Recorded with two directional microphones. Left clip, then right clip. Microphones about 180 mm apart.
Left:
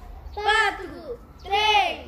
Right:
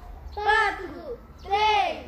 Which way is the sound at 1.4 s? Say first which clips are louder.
Left 2 dB; 30° left (ahead or behind).